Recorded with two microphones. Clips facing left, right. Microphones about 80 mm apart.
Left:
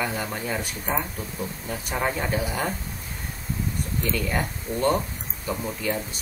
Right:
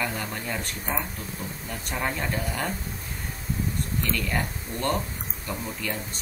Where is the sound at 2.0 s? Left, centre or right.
Centre.